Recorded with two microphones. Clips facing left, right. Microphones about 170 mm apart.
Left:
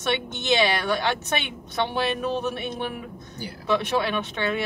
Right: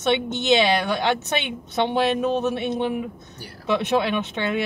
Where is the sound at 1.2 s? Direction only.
20° right (ahead or behind).